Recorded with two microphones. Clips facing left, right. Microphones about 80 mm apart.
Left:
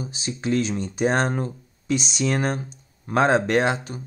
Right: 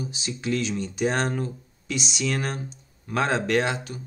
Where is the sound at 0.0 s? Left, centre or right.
Left.